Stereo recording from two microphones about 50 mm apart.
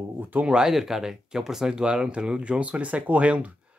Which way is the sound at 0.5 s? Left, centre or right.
Centre.